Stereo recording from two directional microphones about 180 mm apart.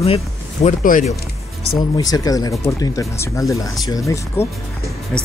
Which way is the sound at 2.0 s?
20° left (ahead or behind).